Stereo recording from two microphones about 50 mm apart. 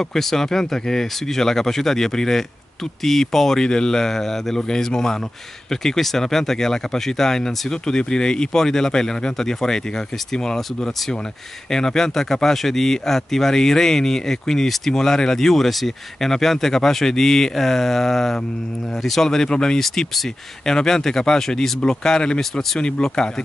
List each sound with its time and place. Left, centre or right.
0.0 s speech: centre